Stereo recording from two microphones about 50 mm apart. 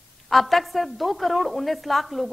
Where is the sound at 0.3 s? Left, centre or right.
Centre.